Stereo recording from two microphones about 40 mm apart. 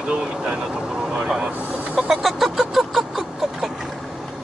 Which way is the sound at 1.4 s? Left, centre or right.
Right.